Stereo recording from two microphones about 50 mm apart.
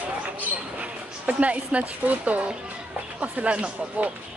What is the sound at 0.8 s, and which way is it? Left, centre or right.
A woman's voice, right.